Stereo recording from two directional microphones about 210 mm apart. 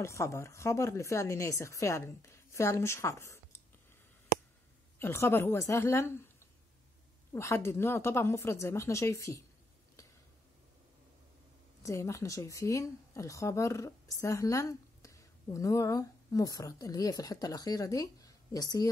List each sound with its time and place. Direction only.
0.0 s a woman's voice: 15° left (ahead or behind)
4.9 s a woman's voice: 10° left (ahead or behind)
7.3 s a woman's voice: 10° left (ahead or behind)
11.8 s a woman's voice: 15° left (ahead or behind)